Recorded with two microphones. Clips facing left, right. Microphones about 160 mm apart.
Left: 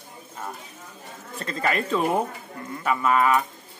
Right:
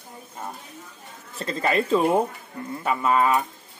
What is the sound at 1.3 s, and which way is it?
A man's voice, 30° right (ahead or behind).